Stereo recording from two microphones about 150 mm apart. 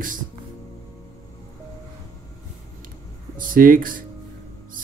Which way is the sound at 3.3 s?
65° right (ahead or behind).